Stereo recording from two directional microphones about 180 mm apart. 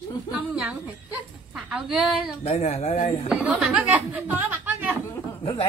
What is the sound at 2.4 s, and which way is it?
Speech, 35° left (ahead or behind).